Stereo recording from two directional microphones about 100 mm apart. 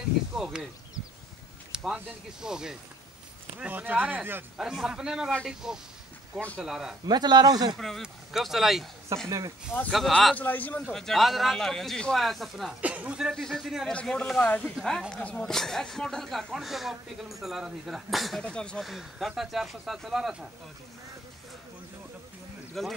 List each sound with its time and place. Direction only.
0.3 s speech: 5° right (ahead or behind)
1.7 s speech: 10° right (ahead or behind)
4.6 s speech: 5° right (ahead or behind)
7.1 s speech: 45° right (ahead or behind)
7.7 s speech: 5° left (ahead or behind)
9.1 s speech: 30° right (ahead or behind)
9.8 s speech: 5° left (ahead or behind)
10.3 s speech: 15° left (ahead or behind)
10.9 s speech: 5° left (ahead or behind)
12.8 s speech: 15° right (ahead or behind)
13.3 s speech: 5° left (ahead or behind)
18.4 s speech: 10° left (ahead or behind)
18.9 s speech: centre (ahead or behind)
22.8 s speech: centre (ahead or behind)